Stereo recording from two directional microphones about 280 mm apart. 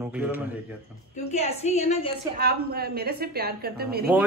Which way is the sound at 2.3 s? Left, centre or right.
Right.